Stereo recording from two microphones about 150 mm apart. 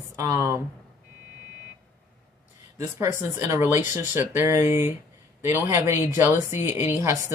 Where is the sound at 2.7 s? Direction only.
20° right (ahead or behind).